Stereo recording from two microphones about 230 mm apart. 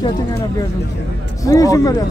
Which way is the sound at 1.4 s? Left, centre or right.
Centre.